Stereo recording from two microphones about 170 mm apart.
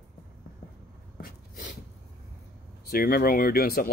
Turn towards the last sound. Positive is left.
turn(degrees=65)  # may be behind; listen again after turning